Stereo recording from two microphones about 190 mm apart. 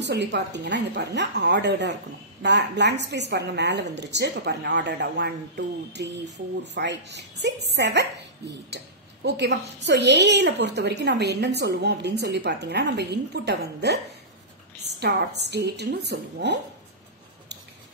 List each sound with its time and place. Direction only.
0.0 s a woman's voice: 65° right (ahead or behind)
15.0 s a woman's voice: 60° right (ahead or behind)